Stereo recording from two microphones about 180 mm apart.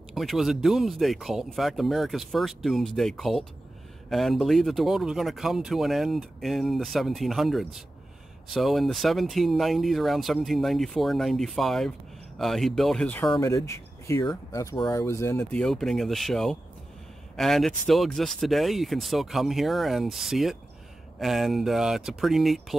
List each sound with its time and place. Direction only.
0.1 s speech: centre (ahead or behind)
15.6 s speech: centre (ahead or behind)